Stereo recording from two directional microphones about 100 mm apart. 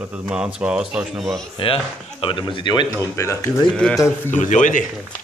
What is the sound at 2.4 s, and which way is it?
Speech, 50° left (ahead or behind).